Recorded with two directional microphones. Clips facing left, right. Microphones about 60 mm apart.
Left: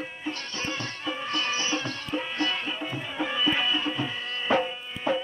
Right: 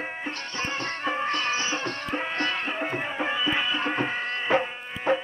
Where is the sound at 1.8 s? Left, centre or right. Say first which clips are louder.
Right 2 dB; right.